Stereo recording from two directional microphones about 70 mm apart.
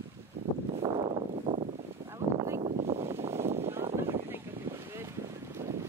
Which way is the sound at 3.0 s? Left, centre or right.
Right.